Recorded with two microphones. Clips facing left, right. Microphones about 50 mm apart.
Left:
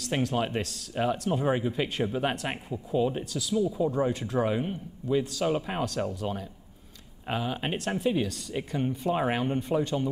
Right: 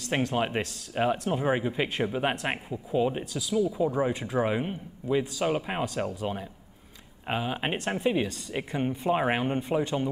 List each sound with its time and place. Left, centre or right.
0.2 s a man's voice: centre